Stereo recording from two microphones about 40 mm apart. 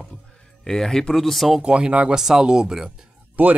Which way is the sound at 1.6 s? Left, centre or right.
Right.